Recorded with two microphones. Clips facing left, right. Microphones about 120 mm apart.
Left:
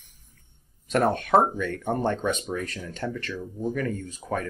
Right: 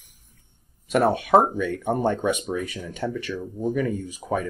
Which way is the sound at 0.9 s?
10° right (ahead or behind).